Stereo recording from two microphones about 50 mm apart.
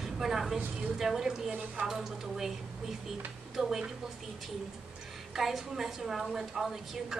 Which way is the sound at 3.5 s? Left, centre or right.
Centre.